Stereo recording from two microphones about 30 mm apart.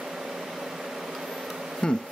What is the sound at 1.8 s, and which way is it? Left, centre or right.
Insect, left.